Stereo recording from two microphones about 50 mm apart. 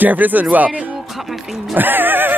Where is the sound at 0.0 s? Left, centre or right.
Right.